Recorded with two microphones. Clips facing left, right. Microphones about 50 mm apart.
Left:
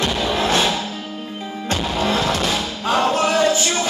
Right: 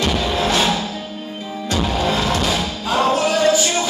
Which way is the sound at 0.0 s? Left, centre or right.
Left.